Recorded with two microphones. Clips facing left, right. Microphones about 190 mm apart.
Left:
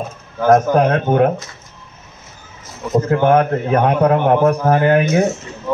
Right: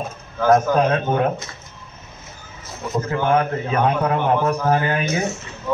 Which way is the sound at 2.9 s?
55° left (ahead or behind).